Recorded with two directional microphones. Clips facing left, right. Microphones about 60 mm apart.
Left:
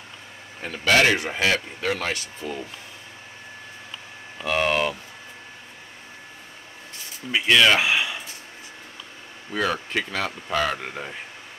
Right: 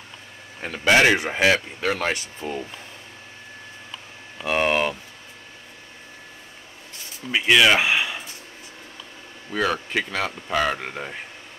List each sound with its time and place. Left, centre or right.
0.6 s a man's voice: centre
4.5 s a sound: centre
7.2 s speech: centre
9.5 s speech: centre